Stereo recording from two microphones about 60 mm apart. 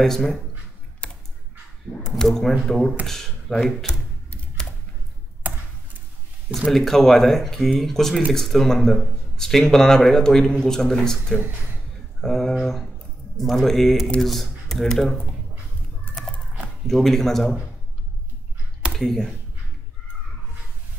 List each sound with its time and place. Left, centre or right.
0.0 s speech: centre
1.0 s typing: centre
2.1 s speech: centre
5.4 s computer keyboard: right
6.7 s speech: centre
16.8 s speech: centre
18.9 s speech: centre